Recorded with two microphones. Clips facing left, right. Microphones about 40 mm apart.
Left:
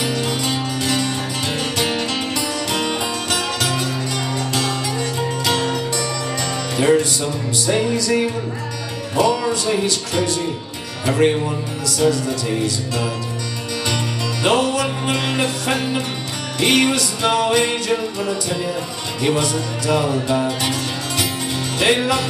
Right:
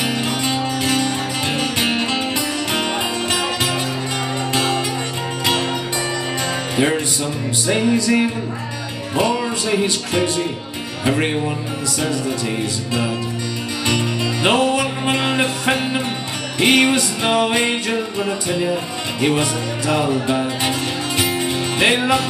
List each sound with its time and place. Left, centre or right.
0.0 s music: right
5.4 s music: right
6.8 s music: right
9.1 s speech: right
12.0 s music: right
13.8 s music: right
21.7 s music: right